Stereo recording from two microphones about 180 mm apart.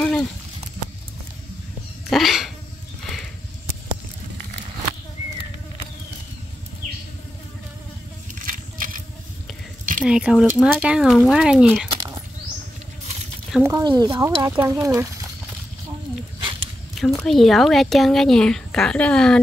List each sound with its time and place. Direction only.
0.0 s a sound: 5° left (ahead or behind)
2.0 s cat: centre (ahead or behind)
8.5 s coin: 50° right (ahead or behind)
10.0 s a woman's voice: 5° right (ahead or behind)
13.6 s speech: 15° right (ahead or behind)
17.2 s a woman's voice: centre (ahead or behind)